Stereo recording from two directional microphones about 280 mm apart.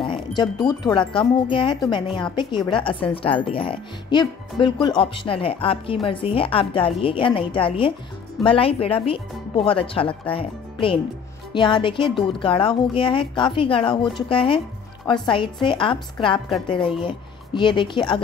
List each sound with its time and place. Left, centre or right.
0.4 s speech: centre
16.4 s a woman's voice: centre
17.6 s speech: centre